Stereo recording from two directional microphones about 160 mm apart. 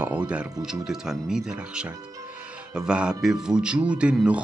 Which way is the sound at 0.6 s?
5° right (ahead or behind).